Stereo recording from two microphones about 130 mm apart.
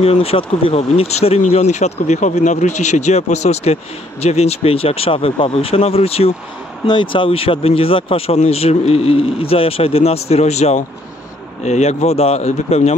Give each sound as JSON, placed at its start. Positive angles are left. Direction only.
{"t": 0.0, "sound": "speech", "side_deg": 50}
{"t": 6.9, "sound": "speech", "side_deg": 40}